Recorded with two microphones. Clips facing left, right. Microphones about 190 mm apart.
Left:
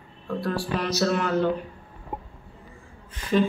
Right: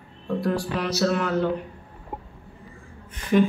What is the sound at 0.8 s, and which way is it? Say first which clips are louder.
Speech: left 2 dB; 5° right (ahead or behind).